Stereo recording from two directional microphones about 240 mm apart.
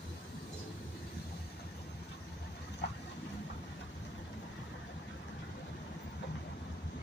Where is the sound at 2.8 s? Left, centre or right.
Left.